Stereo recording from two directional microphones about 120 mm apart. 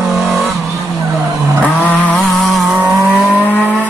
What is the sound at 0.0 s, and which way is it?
Vehicle, centre (ahead or behind).